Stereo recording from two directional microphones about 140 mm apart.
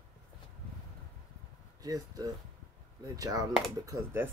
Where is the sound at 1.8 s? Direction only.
25° right (ahead or behind).